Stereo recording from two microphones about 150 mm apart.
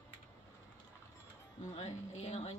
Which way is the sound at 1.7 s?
45° left (ahead or behind).